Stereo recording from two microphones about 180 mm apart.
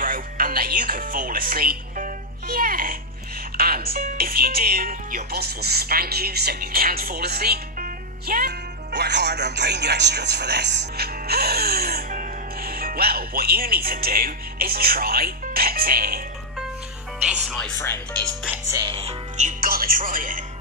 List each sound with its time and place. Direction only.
0.0 s music: 50° right (ahead or behind)
3.5 s speech: 55° right (ahead or behind)
17.5 s music: 5° left (ahead or behind)
17.7 s speech: 15° left (ahead or behind)
18.2 s music: 5° right (ahead or behind)
18.9 s music: 35° right (ahead or behind)